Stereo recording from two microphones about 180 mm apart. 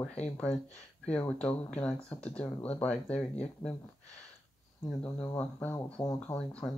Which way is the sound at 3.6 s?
20° left (ahead or behind).